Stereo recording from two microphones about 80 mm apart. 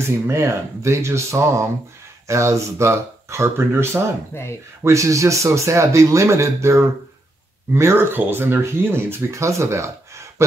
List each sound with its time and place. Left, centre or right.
0.3 s speech: right
4.3 s speech: left
4.8 s speech: right